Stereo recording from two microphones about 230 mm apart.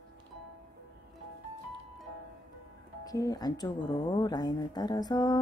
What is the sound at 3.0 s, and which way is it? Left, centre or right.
Speech, centre.